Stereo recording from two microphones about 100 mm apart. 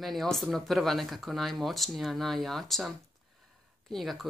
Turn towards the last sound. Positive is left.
turn(degrees=0)  # may be behind; listen again after turning